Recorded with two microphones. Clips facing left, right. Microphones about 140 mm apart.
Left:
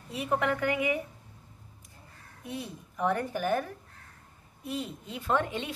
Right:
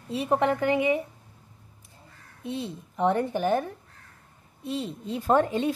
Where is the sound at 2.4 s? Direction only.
25° right (ahead or behind).